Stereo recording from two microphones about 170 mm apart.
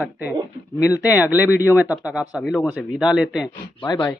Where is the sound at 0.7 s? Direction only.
20° left (ahead or behind).